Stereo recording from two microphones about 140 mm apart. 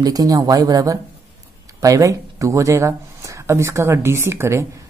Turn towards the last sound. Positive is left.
turn(degrees=-20)  # may be behind; listen again after turning